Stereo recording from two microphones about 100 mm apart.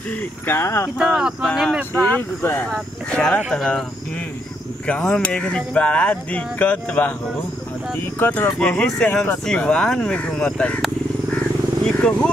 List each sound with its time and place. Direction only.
0.5 s speech: 25° left (ahead or behind)
0.9 s speech: 5° right (ahead or behind)
2.0 s speech: 15° left (ahead or behind)
2.7 s speech: 10° left (ahead or behind)
4.8 s speech: 10° left (ahead or behind)
8.2 s speech: 20° left (ahead or behind)
11.8 s speech: 10° left (ahead or behind)